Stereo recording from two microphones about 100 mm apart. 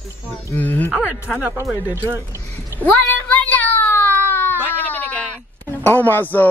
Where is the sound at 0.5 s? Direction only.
15° left (ahead or behind).